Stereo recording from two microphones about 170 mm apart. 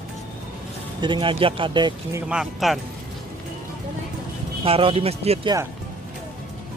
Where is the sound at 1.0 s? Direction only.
25° right (ahead or behind).